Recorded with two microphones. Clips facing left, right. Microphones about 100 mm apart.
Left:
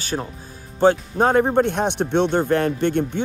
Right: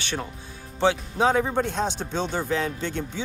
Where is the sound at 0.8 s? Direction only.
50° left (ahead or behind).